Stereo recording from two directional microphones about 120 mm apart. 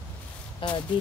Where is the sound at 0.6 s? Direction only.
45° left (ahead or behind).